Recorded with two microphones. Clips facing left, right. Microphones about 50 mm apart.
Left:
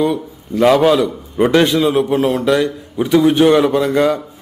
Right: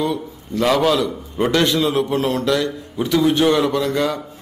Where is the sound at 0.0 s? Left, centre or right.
Centre.